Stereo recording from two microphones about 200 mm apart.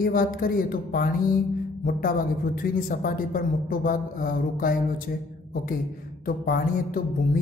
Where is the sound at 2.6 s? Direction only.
45° left (ahead or behind).